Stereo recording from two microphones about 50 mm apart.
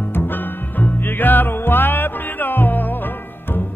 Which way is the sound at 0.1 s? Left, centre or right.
Left.